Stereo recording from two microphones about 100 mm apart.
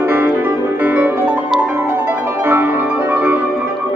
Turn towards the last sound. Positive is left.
turn(degrees=-15)  # may be behind; listen again after turning